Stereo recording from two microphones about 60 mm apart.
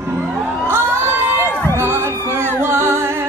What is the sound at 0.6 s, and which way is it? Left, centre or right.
Crowd, right.